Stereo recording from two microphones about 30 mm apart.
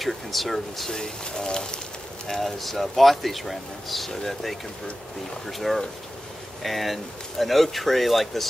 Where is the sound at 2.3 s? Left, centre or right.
Centre.